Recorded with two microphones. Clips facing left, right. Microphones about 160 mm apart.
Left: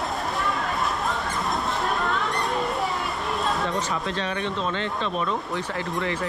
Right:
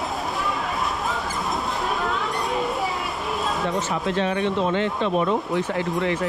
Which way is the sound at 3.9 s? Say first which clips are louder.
Right 5 dB; 20° right (ahead or behind).